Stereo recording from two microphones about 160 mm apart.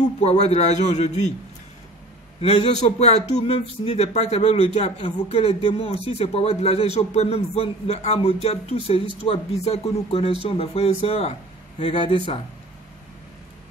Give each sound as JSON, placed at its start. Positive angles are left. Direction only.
{"t": 0.2, "sound": "a man's voice", "side_deg": 45}
{"t": 2.4, "sound": "speech", "side_deg": 40}